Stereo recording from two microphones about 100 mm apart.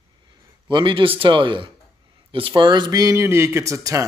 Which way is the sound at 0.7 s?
55° right (ahead or behind).